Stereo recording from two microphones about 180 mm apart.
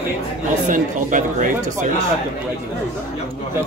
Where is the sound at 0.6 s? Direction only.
45° right (ahead or behind).